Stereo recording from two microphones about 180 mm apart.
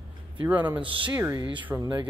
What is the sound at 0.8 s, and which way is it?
Music, 30° right (ahead or behind).